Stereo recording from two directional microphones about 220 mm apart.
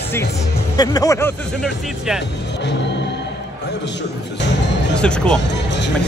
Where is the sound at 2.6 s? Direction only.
50° left (ahead or behind).